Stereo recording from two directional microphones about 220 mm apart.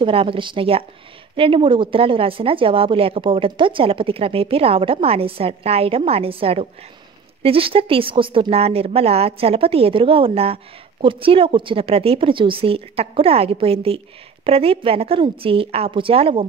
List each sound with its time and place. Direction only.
0.0 s a woman's voice: 25° right (ahead or behind)